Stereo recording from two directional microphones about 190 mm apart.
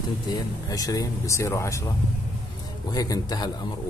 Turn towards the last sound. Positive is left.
turn(degrees=20)  # may be behind; listen again after turning